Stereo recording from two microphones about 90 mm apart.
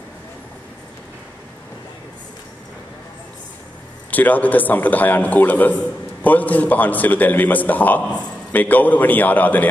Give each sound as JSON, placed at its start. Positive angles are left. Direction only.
{"t": 4.1, "sound": "a man's voice", "side_deg": 20}